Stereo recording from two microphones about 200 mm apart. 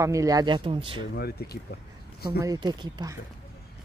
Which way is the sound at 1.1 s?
50° left (ahead or behind).